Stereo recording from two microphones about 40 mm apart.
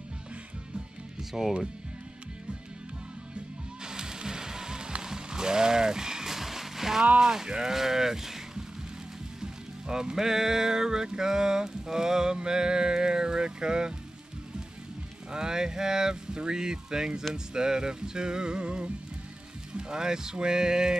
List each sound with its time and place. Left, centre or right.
1.3 s music: centre
3.8 s music: centre
5.0 s a sound: centre
7.2 s speech: centre
9.4 s music: centre
15.3 s music: centre